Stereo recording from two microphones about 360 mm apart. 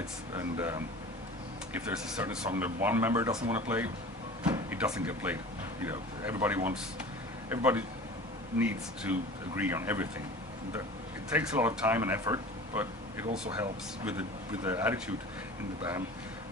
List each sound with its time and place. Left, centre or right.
0.3 s speech: centre
11.3 s speech: centre